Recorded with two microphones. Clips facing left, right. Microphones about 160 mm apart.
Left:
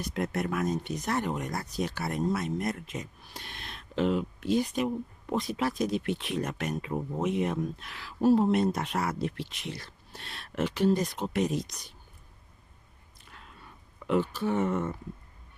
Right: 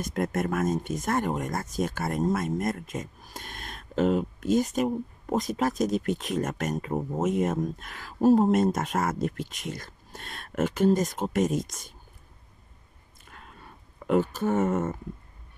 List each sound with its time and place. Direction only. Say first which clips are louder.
0.0 s speech: right 3 dB; 45° right (ahead or behind)
13.3 s a sound: right 3 dB; 50° right (ahead or behind)
14.0 s speech: right 3 dB; 45° right (ahead or behind)